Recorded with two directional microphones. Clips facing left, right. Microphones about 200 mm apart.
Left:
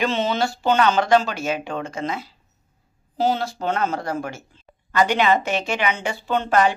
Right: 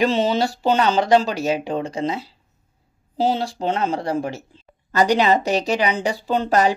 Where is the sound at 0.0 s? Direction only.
35° right (ahead or behind).